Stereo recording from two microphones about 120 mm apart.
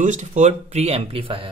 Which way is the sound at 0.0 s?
85° right.